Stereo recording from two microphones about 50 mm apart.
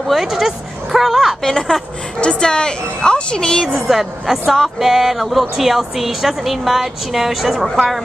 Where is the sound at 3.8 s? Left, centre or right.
Centre.